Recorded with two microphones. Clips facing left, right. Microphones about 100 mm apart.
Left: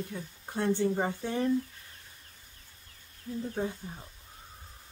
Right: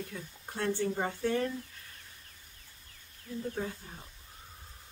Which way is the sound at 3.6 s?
30° left (ahead or behind).